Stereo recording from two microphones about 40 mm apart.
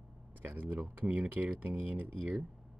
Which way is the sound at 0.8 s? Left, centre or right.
Right.